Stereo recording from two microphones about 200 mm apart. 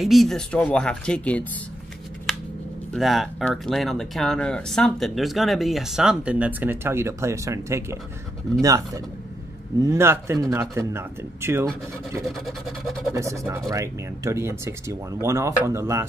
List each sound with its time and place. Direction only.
0.0 s speech: centre (ahead or behind)
2.9 s speech: centre (ahead or behind)
12.3 s speech: centre (ahead or behind)
13.1 s speech: 15° right (ahead or behind)